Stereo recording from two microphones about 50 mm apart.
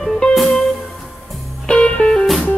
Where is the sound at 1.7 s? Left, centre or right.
Left.